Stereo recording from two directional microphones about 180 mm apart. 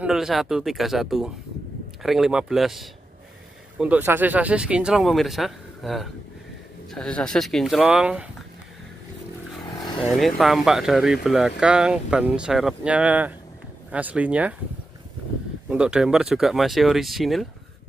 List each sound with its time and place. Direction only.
0.0 s speech: 5° right (ahead or behind)
9.8 s vehicle: 25° left (ahead or behind)
10.1 s speech: centre (ahead or behind)
15.7 s speech: 5° right (ahead or behind)